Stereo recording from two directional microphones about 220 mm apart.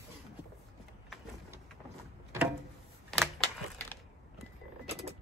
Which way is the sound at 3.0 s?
5° left (ahead or behind).